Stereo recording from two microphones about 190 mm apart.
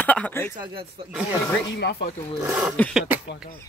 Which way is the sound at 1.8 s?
60° left (ahead or behind).